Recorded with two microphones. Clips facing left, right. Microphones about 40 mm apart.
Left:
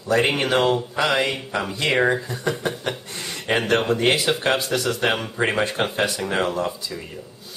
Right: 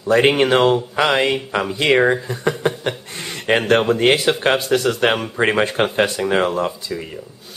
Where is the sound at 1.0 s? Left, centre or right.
Centre.